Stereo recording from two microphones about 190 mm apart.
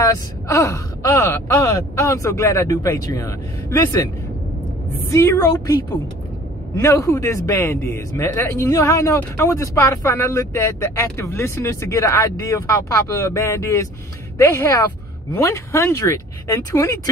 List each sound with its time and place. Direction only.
0.0 s speech: 15° left (ahead or behind)
5.1 s speech: 15° left (ahead or behind)
6.8 s speech: 15° left (ahead or behind)